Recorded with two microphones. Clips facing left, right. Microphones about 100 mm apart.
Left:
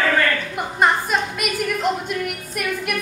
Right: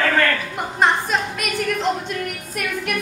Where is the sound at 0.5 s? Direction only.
5° left (ahead or behind).